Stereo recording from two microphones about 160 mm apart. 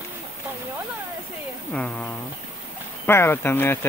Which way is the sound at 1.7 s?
5° left (ahead or behind).